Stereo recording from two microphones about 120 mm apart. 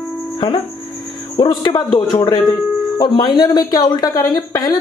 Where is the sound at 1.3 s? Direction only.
35° left (ahead or behind).